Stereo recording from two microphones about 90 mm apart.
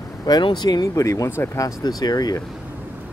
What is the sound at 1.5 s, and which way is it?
Speech, 40° left (ahead or behind).